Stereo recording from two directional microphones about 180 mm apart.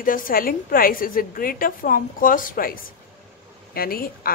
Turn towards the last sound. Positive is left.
turn(degrees=55)  # may be behind; listen again after turning